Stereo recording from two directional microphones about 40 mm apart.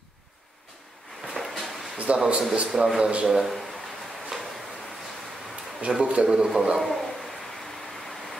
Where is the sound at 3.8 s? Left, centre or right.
Centre.